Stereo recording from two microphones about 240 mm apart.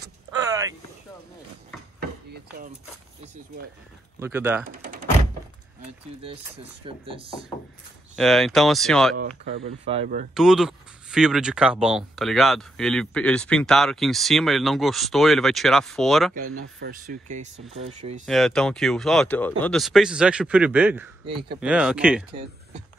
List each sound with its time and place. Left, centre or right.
2.0 s chopping: right
4.2 s speech: centre
4.6 s speech: right
6.8 s speech: right
8.2 s speech: centre
9.7 s speech: right
10.3 s speech: centre
16.8 s speech: right
18.2 s speech: centre